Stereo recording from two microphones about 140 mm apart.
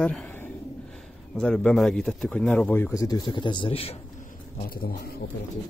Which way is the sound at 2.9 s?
25° left (ahead or behind).